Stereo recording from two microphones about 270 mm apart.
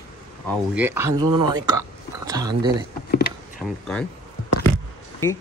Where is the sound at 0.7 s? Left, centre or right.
Centre.